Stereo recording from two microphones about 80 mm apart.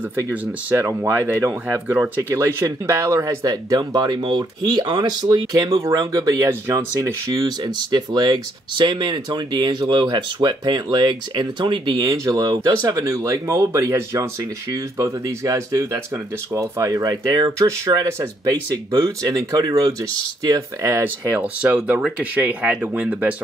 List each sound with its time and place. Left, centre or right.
0.1 s speech: right
3.4 s speech: right
5.9 s speech: right
7.3 s speech: right
11.9 s speech: right
21.0 s speech: right